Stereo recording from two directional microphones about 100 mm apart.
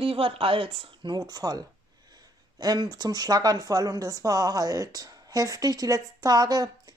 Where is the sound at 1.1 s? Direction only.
45° right (ahead or behind).